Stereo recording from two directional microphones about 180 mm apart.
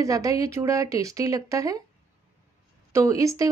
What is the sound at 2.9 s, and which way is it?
Speech, 15° right (ahead or behind).